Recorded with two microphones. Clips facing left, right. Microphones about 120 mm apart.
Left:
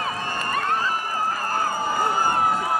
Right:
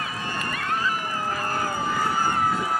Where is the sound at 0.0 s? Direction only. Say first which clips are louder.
Left 3 dB; 40° left (ahead or behind).